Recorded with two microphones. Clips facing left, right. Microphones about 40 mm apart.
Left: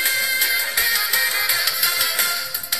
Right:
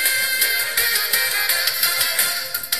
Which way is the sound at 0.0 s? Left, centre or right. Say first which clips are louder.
Right 1 dB; right.